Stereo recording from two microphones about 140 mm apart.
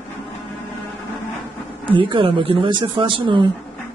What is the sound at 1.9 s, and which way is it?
Speech, 40° right (ahead or behind).